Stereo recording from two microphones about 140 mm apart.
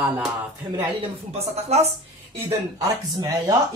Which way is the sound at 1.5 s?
50° right (ahead or behind).